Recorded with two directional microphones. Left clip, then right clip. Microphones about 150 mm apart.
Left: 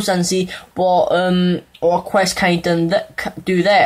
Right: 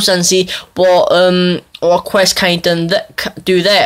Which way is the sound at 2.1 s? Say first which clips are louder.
Right 4 dB; 25° right (ahead or behind).